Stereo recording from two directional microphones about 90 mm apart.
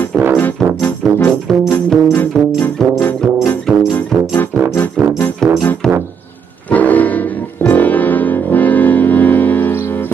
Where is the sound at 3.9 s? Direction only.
25° left (ahead or behind).